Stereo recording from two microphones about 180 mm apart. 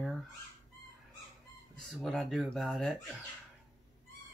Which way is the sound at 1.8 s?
Centre (ahead or behind).